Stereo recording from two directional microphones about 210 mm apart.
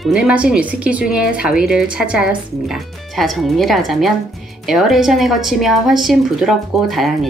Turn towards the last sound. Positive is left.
turn(degrees=0)  # may be behind; listen again after turning